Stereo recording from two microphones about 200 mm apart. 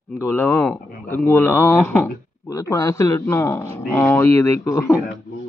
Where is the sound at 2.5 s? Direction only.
15° left (ahead or behind).